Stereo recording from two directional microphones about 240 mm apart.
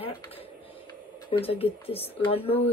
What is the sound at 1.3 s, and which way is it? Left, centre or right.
Speech, left.